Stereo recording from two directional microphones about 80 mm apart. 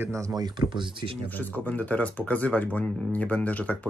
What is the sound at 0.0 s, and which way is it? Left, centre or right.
Speech, right.